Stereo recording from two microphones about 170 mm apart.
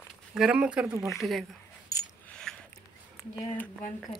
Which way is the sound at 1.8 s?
20° left (ahead or behind).